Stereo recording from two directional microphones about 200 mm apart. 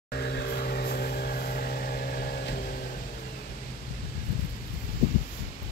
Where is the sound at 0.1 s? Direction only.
55° left (ahead or behind).